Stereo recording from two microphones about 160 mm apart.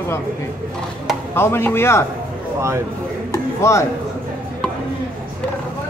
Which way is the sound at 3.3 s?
20° left (ahead or behind).